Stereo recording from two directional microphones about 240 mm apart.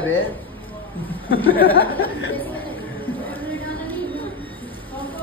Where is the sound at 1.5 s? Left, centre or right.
Left.